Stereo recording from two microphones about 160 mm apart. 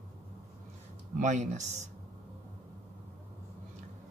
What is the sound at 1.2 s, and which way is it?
Speech, 50° right (ahead or behind).